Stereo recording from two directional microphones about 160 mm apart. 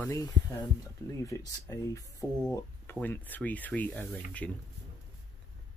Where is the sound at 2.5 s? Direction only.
10° left (ahead or behind).